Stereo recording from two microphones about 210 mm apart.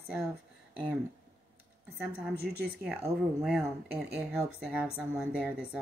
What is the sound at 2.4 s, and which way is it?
Speech, 50° right (ahead or behind).